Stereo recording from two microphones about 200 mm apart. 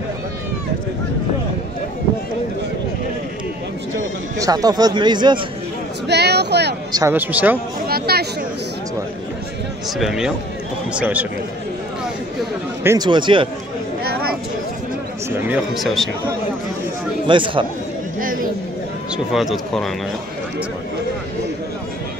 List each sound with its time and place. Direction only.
4.4 s speech: 20° right (ahead or behind)
6.0 s a sound: 55° right (ahead or behind)
6.9 s speech: 15° right (ahead or behind)
7.9 s speech: 50° right (ahead or behind)
9.9 s speech: centre (ahead or behind)
12.8 s speech: 20° right (ahead or behind)
15.4 s speech: 5° right (ahead or behind)
17.3 s speech: 25° right (ahead or behind)
18.2 s a sound: 45° right (ahead or behind)
19.1 s speech: centre (ahead or behind)